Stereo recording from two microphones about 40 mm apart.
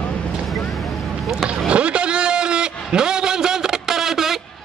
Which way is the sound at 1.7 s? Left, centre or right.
Right.